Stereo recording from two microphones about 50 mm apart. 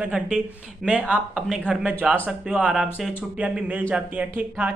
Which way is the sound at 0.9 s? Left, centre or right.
Right.